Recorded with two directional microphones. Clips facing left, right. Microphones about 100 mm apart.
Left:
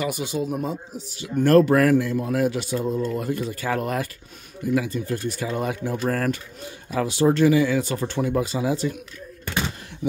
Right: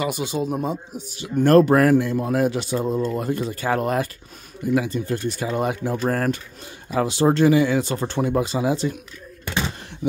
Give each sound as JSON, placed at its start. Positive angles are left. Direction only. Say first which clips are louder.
{"t": 0.0, "sound": "speech", "louder": "right 2 dB", "side_deg": -25}